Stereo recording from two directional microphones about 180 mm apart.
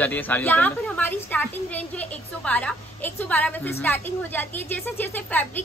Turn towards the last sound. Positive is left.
turn(degrees=10)  # may be behind; listen again after turning